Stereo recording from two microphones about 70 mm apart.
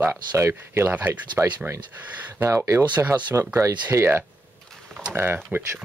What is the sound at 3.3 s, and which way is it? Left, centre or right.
Speech, right.